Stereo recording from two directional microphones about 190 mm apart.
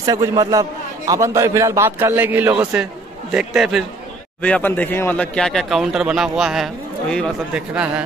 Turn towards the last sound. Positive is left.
turn(degrees=-5)  # may be behind; listen again after turning